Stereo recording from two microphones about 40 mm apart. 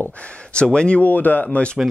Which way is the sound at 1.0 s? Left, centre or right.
Left.